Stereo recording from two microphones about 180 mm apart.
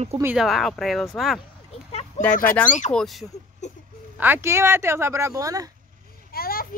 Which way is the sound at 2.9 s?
Centre (ahead or behind).